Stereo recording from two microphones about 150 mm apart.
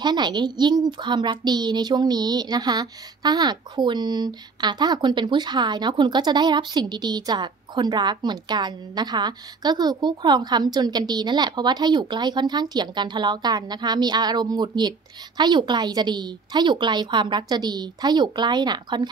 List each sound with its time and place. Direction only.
0.0 s a woman's voice: 30° right (ahead or behind)